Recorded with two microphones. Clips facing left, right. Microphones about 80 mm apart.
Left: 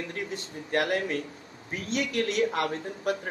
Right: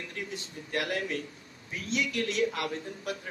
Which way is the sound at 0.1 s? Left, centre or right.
Left.